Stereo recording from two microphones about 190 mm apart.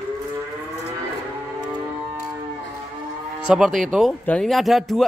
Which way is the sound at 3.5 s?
Centre (ahead or behind).